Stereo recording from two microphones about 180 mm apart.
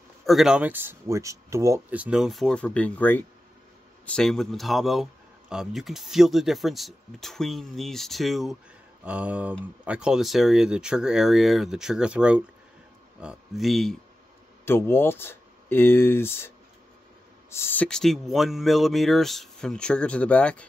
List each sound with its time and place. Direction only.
0.3 s speech: 5° right (ahead or behind)
14.6 s speech: 15° left (ahead or behind)